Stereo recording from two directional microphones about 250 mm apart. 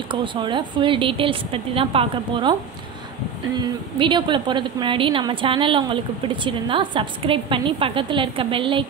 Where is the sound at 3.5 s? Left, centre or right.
Centre.